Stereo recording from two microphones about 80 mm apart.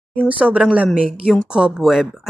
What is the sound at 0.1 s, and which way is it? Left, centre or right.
Speech, centre.